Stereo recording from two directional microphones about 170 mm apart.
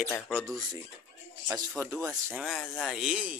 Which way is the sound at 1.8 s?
20° right (ahead or behind).